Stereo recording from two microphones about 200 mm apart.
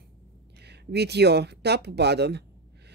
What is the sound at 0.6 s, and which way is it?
Speech, 55° right (ahead or behind).